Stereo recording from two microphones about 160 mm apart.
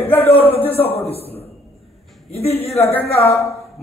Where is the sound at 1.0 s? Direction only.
40° left (ahead or behind).